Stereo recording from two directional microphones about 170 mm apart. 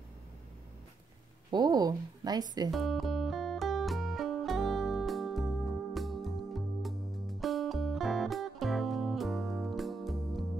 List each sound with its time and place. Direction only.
1.5 s a woman's voice: 25° right (ahead or behind)
2.7 s music: centre (ahead or behind)